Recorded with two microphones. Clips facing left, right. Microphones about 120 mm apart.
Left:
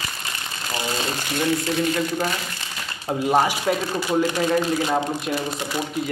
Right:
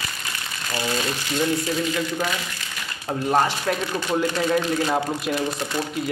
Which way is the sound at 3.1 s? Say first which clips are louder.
Left 1 dB; 5° left (ahead or behind).